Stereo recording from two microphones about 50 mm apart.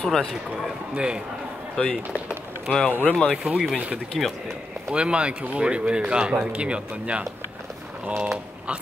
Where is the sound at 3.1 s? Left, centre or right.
Centre.